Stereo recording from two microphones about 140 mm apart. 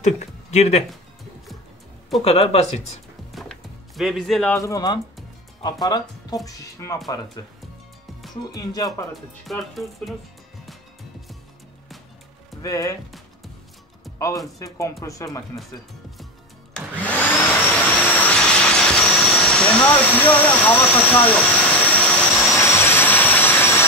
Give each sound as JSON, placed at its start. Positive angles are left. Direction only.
{"t": 0.0, "sound": "speech", "side_deg": 55}
{"t": 2.2, "sound": "speech", "side_deg": 45}
{"t": 3.3, "sound": "music", "side_deg": 0}
{"t": 4.6, "sound": "speech", "side_deg": 25}
{"t": 8.5, "sound": "speech", "side_deg": 25}
{"t": 9.1, "sound": "speech", "side_deg": 0}
{"t": 12.6, "sound": "speech", "side_deg": 25}
{"t": 14.1, "sound": "speech", "side_deg": 20}
{"t": 17.0, "sound": "vacuum cleaner", "side_deg": 10}
{"t": 18.1, "sound": "vehicle", "side_deg": 10}
{"t": 20.2, "sound": "speech", "side_deg": 10}
{"t": 22.3, "sound": "vehicle", "side_deg": 0}
{"t": 22.6, "sound": "vehicle", "side_deg": 15}